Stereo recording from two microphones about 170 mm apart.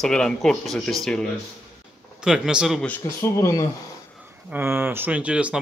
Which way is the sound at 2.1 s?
5° right (ahead or behind).